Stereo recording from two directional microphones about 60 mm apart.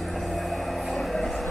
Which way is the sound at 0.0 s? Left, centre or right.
Centre.